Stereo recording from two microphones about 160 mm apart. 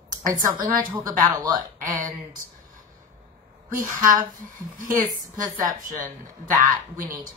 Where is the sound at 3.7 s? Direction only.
55° right (ahead or behind).